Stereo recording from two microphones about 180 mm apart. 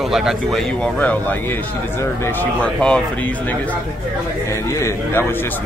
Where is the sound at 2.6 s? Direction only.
5° left (ahead or behind).